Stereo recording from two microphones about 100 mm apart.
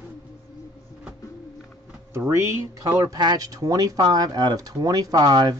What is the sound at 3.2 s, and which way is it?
Speech, 40° right (ahead or behind).